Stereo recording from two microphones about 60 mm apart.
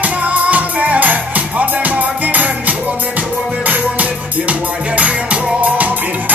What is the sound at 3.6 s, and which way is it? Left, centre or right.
Music, right.